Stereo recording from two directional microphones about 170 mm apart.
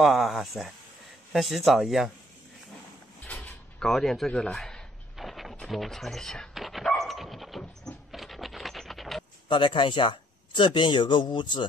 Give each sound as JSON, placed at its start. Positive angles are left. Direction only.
{"t": 0.0, "sound": "speech", "side_deg": 0}
{"t": 3.3, "sound": "sliding door", "side_deg": 10}
{"t": 9.5, "sound": "speech", "side_deg": 30}